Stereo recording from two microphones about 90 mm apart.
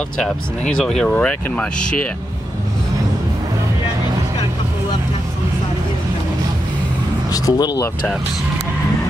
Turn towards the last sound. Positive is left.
turn(degrees=45)  # may be behind; listen again after turning